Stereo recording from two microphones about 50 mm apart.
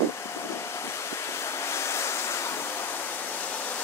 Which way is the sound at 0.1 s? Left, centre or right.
Left.